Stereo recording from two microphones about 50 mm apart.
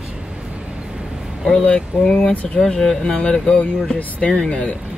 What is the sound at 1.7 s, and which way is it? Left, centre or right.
Speech, centre.